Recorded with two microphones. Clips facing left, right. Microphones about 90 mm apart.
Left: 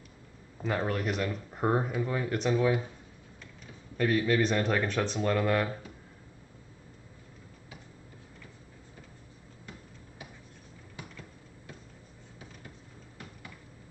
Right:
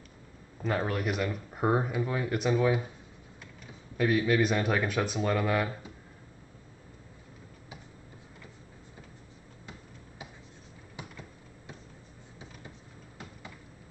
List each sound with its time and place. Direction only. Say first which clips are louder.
0.6 s speech: even; centre (ahead or behind)
3.9 s speech: right 1 dB; 10° right (ahead or behind)
11.0 s a sound: right 2 dB; 20° right (ahead or behind)